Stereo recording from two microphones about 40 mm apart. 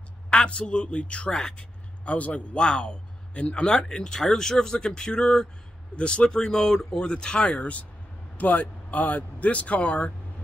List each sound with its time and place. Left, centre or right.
0.3 s a man's voice: left
2.1 s speech: left
2.5 s speech: left
8.4 s speech: left